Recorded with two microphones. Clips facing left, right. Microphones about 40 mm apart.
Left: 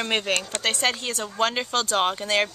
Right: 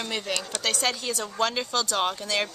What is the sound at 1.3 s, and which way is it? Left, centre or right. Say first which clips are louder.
Speech: left 3 dB; left.